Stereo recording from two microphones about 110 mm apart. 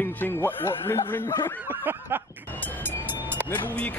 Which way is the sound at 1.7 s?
20° right (ahead or behind).